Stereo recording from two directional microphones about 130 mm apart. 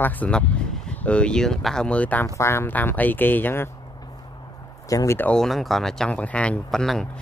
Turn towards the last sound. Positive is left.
turn(degrees=5)  # may be behind; listen again after turning